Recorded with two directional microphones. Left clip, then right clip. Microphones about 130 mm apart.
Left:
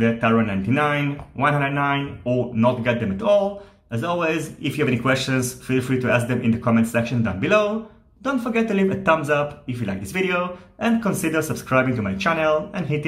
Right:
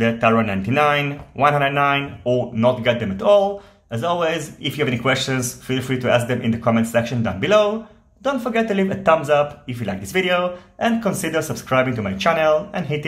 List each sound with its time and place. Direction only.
0.0 s speech: 25° right (ahead or behind)
2.2 s speech: 15° right (ahead or behind)